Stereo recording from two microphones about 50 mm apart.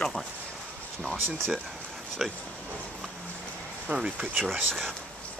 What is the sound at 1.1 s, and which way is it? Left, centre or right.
Speech, right.